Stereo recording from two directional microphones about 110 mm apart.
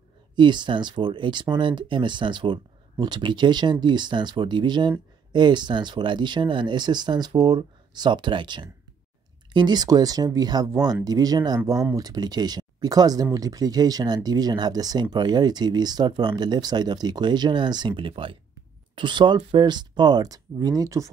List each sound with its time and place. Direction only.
0.4 s speech: 45° right (ahead or behind)